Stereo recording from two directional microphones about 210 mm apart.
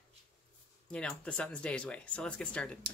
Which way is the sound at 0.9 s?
5° left (ahead or behind).